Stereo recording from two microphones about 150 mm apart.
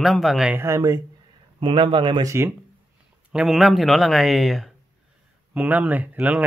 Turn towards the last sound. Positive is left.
turn(degrees=-10)  # may be behind; listen again after turning